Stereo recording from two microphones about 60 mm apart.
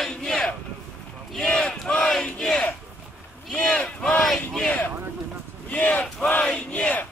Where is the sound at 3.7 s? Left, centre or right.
Centre.